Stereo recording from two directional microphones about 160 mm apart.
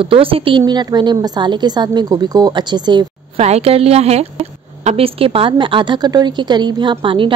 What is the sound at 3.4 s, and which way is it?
Speech, 40° right (ahead or behind).